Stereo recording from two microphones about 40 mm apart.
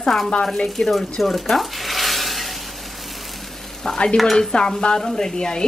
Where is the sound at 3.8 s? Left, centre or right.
Centre.